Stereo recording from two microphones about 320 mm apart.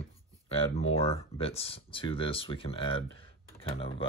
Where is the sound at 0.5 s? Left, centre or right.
Centre.